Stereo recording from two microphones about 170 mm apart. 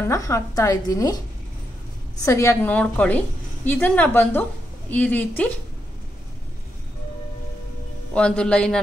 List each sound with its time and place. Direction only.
0.0 s a woman's voice: 15° left (ahead or behind)
2.2 s a woman's voice: 15° left (ahead or behind)
8.1 s a man's voice: 5° left (ahead or behind)